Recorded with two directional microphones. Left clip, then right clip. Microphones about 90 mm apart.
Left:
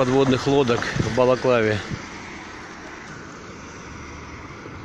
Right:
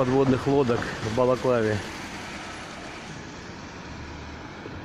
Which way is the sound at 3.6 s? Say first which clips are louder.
Left 2 dB; 5° right (ahead or behind).